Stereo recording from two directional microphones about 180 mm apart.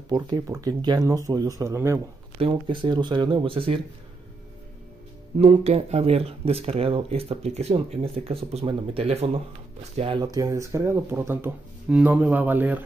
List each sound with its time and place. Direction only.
0.1 s speech: 20° right (ahead or behind)
2.4 s speech: 30° right (ahead or behind)
5.4 s speech: 35° right (ahead or behind); by 12.8 s 10° right (ahead or behind)